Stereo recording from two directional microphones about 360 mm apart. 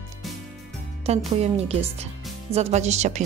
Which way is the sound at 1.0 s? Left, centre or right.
Centre.